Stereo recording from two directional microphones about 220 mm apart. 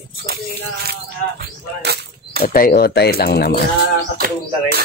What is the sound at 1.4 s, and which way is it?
Whip, 50° right (ahead or behind).